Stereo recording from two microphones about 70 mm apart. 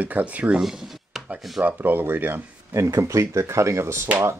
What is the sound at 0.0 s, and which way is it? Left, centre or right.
Speech, right.